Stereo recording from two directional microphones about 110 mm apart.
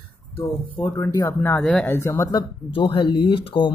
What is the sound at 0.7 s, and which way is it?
Speech, 20° left (ahead or behind).